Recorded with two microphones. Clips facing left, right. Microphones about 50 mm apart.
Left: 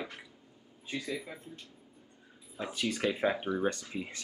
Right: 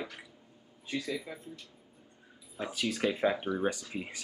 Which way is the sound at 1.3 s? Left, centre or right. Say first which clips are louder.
Right 1 dB; left.